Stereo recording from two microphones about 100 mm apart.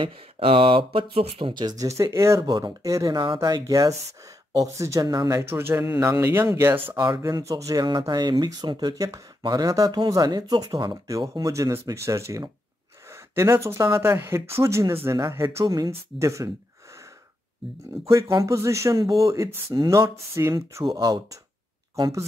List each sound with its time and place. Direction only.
0.0 s speech: 65° right (ahead or behind)
1.6 s speech: 40° right (ahead or behind)
2.4 s speech: 45° right (ahead or behind)
5.4 s speech: 25° right (ahead or behind)
7.2 s speech: 35° right (ahead or behind)
8.0 s speech: 45° right (ahead or behind)
15.6 s speech: 40° right (ahead or behind)
15.9 s speech: 30° right (ahead or behind)
18.0 s speech: 30° right (ahead or behind)